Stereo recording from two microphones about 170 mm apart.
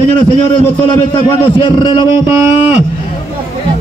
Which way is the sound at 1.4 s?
30° left (ahead or behind).